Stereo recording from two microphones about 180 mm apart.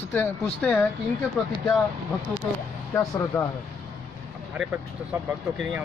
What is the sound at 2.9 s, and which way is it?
Speech, 15° left (ahead or behind).